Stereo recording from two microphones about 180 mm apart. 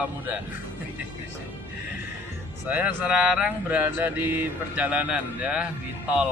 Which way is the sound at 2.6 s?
10° right (ahead or behind).